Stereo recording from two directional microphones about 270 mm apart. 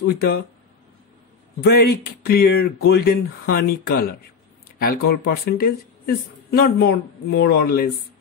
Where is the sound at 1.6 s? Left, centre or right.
Left.